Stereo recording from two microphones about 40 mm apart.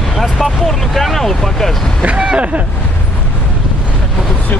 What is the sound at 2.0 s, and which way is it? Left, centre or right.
Speech, right.